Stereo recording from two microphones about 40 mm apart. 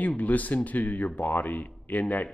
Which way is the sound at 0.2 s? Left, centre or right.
Left.